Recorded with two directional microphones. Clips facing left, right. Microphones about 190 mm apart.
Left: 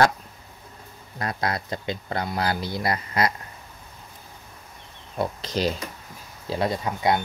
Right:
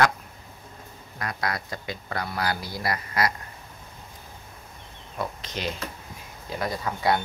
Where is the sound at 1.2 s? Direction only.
25° left (ahead or behind).